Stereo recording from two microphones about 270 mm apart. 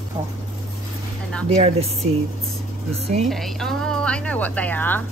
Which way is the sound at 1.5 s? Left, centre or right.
Right.